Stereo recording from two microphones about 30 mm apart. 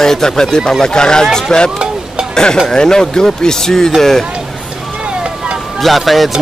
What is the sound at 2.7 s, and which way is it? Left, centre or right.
Speech, left.